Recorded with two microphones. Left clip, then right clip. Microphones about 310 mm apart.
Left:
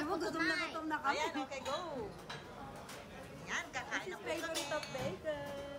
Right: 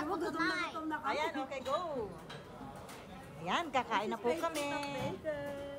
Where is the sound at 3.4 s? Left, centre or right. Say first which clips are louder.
Right 7 dB; centre.